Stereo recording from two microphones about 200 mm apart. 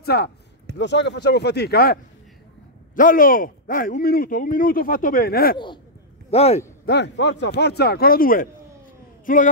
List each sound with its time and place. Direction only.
0.0 s speech: 50° left (ahead or behind)
3.0 s speech: 45° left (ahead or behind)
6.3 s a man's voice: 30° left (ahead or behind)
6.9 s a man's voice: 60° left (ahead or behind); by 9.5 s 40° left (ahead or behind)